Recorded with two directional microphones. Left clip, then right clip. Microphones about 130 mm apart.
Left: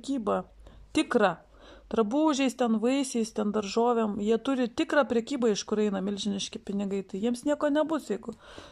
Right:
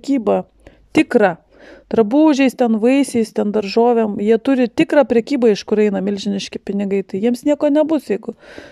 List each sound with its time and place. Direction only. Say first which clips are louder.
0.0 s speech: right 13 dB; 45° right (ahead or behind)